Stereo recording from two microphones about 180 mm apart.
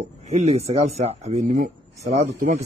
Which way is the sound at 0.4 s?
35° right (ahead or behind).